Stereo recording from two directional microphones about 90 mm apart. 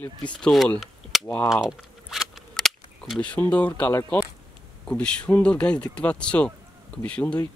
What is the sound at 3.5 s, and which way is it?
Speech, 15° left (ahead or behind).